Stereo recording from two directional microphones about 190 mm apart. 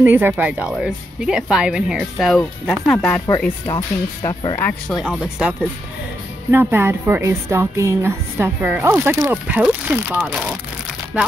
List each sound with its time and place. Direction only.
0.0 s speech: 10° right (ahead or behind); by 3.7 s 10° left (ahead or behind)
3.7 s speech: 20° left (ahead or behind)
4.6 s speech: 5° left (ahead or behind)
5.2 s a woman's voice: 5° right (ahead or behind)